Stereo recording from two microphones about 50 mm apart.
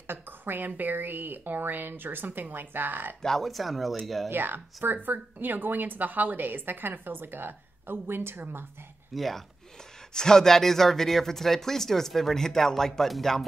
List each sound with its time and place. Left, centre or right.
0.0 s speech: right
3.2 s speech: centre
4.3 s a woman's voice: right
9.1 s speech: centre